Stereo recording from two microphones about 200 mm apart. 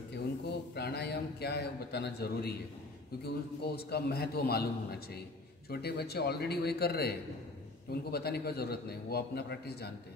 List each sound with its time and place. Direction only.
0.1 s a man's voice: 55° left (ahead or behind)